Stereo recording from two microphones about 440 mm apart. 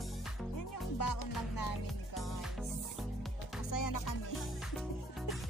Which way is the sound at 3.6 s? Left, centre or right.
Left.